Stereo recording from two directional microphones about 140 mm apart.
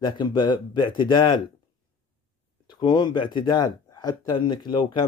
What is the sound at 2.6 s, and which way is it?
A man's voice, 30° left (ahead or behind).